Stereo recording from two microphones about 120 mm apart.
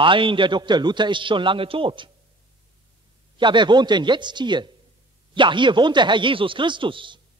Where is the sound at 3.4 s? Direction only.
40° right (ahead or behind).